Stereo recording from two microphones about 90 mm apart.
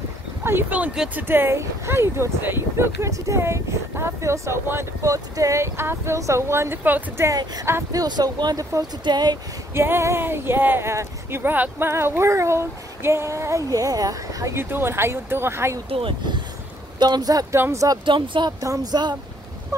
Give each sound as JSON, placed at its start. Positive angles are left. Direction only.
{"t": 0.4, "sound": "speech", "side_deg": -25}
{"t": 7.2, "sound": "speech", "side_deg": -45}
{"t": 9.8, "sound": "speech", "side_deg": -30}
{"t": 14.5, "sound": "speech", "side_deg": -25}
{"t": 15.9, "sound": "speech", "side_deg": -80}
{"t": 17.0, "sound": "speech", "side_deg": -50}
{"t": 17.6, "sound": "speech", "side_deg": -30}
{"t": 18.0, "sound": "speech", "side_deg": -65}
{"t": 18.6, "sound": "speech", "side_deg": -40}